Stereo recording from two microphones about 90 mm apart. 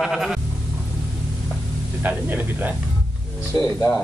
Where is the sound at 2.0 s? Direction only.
20° right (ahead or behind).